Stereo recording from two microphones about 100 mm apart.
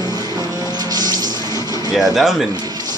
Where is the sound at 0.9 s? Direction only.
40° right (ahead or behind).